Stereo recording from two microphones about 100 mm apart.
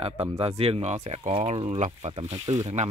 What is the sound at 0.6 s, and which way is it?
Speech, 85° right.